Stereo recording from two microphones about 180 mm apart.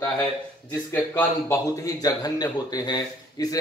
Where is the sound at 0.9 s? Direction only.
15° left (ahead or behind).